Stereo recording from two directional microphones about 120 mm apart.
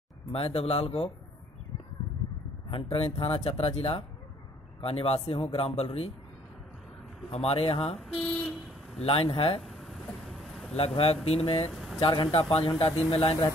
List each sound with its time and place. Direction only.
0.3 s speech: 55° left (ahead or behind)
2.7 s speech: 50° left (ahead or behind)
7.2 s speech: 55° left (ahead or behind)
8.2 s vehicle: 5° left (ahead or behind)
9.0 s speech: 50° left (ahead or behind)
9.6 s a sound: centre (ahead or behind)
11.2 s speech: 55° left (ahead or behind)
11.7 s a sound: centre (ahead or behind)
12.0 s speech: 50° left (ahead or behind)